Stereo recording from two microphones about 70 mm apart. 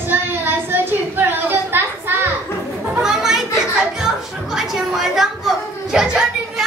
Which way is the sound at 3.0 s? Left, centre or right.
Centre.